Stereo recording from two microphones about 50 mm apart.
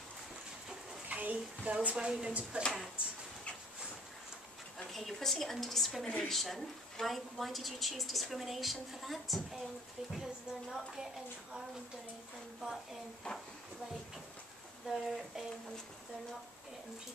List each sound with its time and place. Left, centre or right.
1.0 s a sound: right
2.0 s a woman's voice: centre
4.9 s a woman's voice: centre
6.0 s a woman's voice: centre
14.9 s a woman's voice: centre